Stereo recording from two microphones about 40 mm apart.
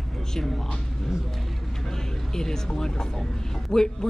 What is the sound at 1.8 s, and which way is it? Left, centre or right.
Speech, centre.